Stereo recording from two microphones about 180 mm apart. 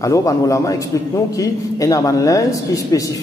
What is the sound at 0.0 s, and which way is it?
A man's voice, 15° left (ahead or behind).